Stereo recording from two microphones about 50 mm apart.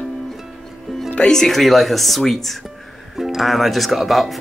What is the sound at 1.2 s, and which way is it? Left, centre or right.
Speech, centre.